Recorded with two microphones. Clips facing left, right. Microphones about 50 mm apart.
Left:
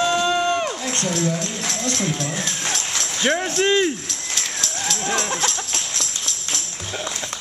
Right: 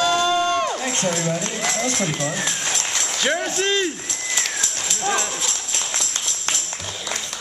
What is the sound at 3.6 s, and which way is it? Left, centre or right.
Speech, centre.